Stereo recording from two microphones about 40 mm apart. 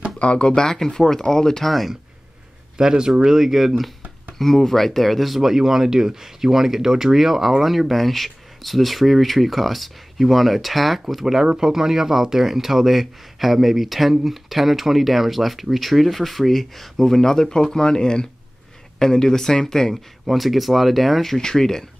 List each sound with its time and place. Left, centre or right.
0.2 s speech: left
2.8 s speech: centre
3.3 s speech: centre
4.4 s speech: centre
20.2 s speech: centre